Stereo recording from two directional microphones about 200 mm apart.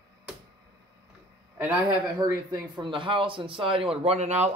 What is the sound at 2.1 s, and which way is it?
A man's voice, 20° right (ahead or behind).